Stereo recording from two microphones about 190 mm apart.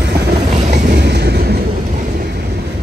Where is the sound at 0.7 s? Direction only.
60° right (ahead or behind).